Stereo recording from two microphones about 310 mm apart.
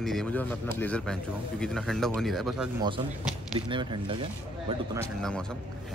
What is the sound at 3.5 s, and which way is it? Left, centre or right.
Speech, centre.